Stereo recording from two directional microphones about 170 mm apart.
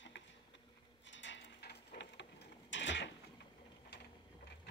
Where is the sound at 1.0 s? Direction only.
90° left.